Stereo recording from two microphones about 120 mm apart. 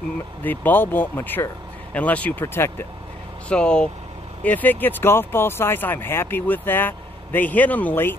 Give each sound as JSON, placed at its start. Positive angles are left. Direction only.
{"t": 0.4, "sound": "speech", "side_deg": 15}
{"t": 3.4, "sound": "speech", "side_deg": 5}